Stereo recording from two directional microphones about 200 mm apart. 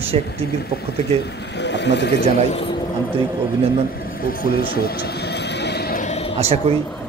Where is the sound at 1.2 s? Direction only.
60° left (ahead or behind).